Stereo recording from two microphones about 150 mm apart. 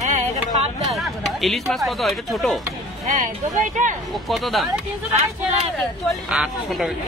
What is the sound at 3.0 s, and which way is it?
Speech, 60° right (ahead or behind).